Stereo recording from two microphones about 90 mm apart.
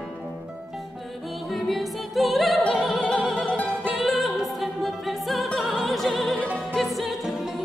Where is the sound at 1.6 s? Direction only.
Centre (ahead or behind).